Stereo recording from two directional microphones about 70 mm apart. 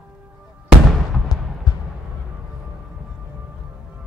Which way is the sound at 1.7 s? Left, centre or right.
Left.